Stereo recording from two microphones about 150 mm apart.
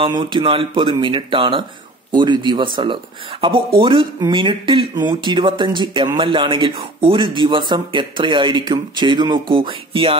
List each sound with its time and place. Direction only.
0.0 s speech: 30° right (ahead or behind)